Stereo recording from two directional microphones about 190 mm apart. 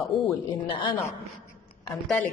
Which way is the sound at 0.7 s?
25° left (ahead or behind).